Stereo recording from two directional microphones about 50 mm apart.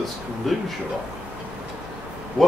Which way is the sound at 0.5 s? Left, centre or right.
Centre.